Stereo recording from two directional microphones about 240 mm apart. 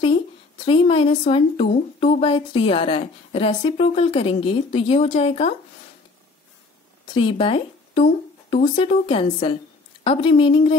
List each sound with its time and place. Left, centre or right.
0.7 s speech: left
7.2 s speech: left